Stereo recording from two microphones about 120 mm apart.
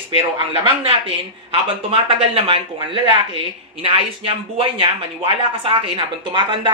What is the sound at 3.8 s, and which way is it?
A woman's voice, 50° right (ahead or behind).